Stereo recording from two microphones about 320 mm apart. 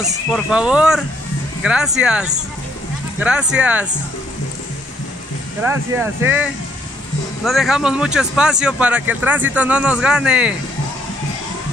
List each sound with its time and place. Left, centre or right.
0.3 s speech: centre
5.6 s speech: centre